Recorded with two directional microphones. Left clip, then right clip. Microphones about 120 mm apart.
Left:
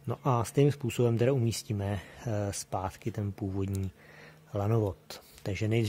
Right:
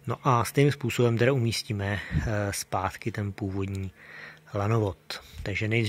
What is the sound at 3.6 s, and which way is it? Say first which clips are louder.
Speech: right 2 dB; 20° left (ahead or behind).